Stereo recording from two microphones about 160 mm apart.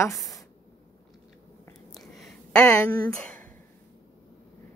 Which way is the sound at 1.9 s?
Centre (ahead or behind).